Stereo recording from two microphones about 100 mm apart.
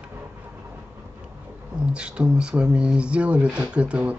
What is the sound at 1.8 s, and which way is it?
Speech, 10° right (ahead or behind).